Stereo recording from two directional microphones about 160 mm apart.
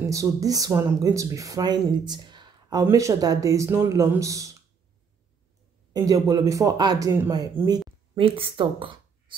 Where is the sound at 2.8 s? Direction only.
20° right (ahead or behind).